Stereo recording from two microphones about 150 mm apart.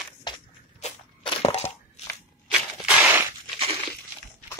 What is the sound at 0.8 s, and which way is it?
Crunch, 40° left (ahead or behind).